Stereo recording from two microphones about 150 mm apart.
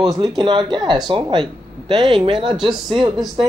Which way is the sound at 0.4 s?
30° right (ahead or behind).